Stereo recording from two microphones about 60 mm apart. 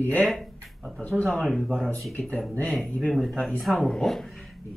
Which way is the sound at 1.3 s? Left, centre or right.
Centre.